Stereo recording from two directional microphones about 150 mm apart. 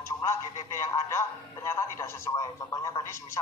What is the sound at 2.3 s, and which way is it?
Speech, 20° left (ahead or behind).